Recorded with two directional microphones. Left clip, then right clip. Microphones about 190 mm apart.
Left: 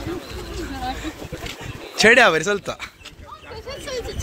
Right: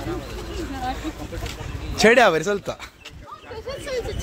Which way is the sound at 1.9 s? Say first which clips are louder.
Left 2 dB; 10° right (ahead or behind).